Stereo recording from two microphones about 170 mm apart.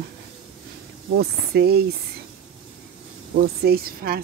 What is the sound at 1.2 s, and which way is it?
Speech, 70° right (ahead or behind).